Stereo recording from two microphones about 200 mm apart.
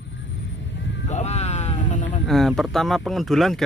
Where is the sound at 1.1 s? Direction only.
35° left (ahead or behind).